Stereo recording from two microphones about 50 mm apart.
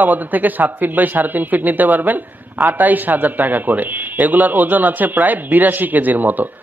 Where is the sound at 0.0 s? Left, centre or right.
Right.